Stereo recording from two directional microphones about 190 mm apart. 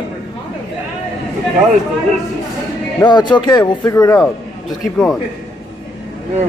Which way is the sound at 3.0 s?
25° left (ahead or behind).